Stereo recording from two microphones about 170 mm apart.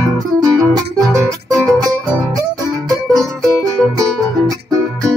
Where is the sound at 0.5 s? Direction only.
5° left (ahead or behind).